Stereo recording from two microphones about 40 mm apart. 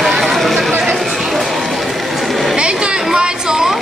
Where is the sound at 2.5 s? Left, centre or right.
Right.